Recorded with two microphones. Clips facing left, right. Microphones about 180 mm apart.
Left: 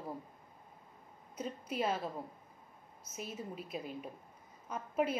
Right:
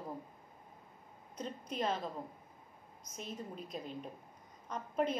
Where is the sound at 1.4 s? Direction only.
5° left (ahead or behind).